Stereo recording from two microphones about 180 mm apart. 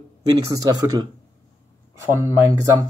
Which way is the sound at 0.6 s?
20° right (ahead or behind).